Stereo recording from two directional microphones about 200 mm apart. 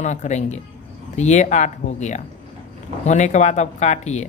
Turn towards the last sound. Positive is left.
turn(degrees=35)  # may be behind; listen again after turning